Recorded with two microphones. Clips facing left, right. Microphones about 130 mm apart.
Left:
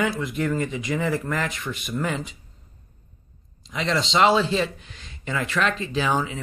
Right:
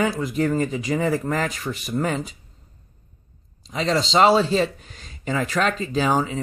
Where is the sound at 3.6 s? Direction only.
35° right (ahead or behind).